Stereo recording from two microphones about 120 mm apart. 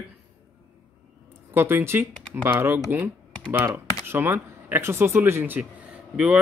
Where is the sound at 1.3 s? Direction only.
20° right (ahead or behind).